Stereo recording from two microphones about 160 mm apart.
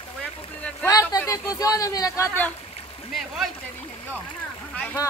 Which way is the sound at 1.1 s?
20° left (ahead or behind).